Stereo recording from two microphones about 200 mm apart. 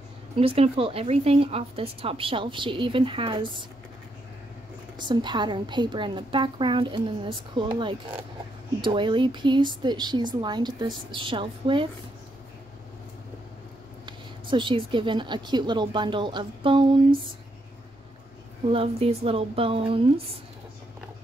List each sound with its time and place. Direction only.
0.4 s speech: 30° right (ahead or behind)
4.9 s speech: 20° right (ahead or behind)
14.0 s speech: 25° right (ahead or behind)
18.7 s speech: 30° right (ahead or behind)